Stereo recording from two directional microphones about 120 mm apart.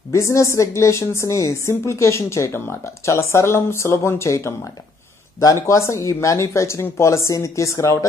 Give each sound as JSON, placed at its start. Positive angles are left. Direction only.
{"t": 0.1, "sound": "a woman's voice", "side_deg": 25}